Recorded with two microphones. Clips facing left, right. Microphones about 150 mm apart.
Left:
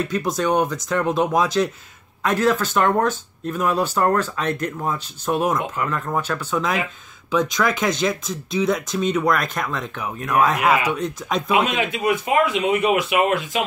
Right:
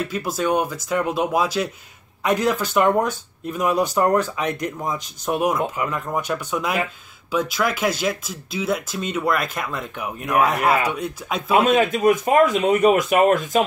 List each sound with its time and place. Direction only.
0.1 s speech: 5° right (ahead or behind)
11.5 s speech: 45° right (ahead or behind)